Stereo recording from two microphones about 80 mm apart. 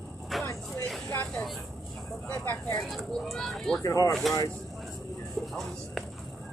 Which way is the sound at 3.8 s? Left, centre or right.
Left.